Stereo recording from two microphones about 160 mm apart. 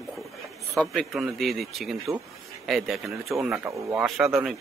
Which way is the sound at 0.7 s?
Centre (ahead or behind).